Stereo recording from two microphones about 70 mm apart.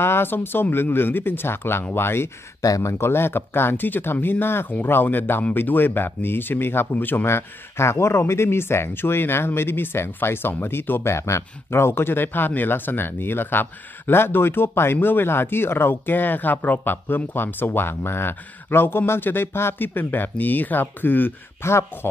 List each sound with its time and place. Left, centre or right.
0.0 s speech: left
2.6 s speech: left